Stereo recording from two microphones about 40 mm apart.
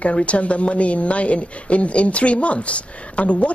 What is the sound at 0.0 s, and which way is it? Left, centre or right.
Speech, left.